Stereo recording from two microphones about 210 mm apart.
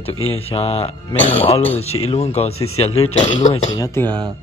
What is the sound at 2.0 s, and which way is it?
Speech, 30° left (ahead or behind).